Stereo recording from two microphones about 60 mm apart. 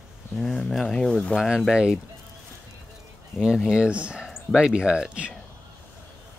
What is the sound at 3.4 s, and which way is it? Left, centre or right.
Speech, centre.